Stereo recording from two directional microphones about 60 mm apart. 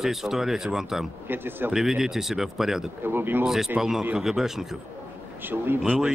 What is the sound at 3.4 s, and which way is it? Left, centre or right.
Speech, centre.